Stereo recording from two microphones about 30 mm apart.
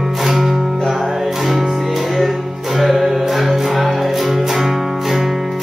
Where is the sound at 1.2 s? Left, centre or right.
Centre.